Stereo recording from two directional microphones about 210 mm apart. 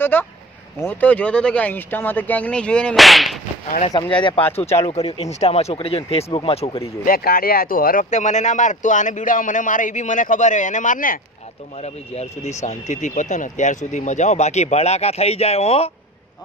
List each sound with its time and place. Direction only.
0.0 s speech: 10° left (ahead or behind)
4.2 s speech: 20° left (ahead or behind)
7.1 s speech: 45° left (ahead or behind); by 15.9 s 30° left (ahead or behind)